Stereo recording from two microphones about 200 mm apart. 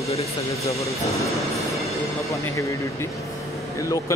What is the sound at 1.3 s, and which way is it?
Train, centre (ahead or behind).